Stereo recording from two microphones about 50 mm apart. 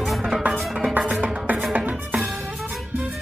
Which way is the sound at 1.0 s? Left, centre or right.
Right.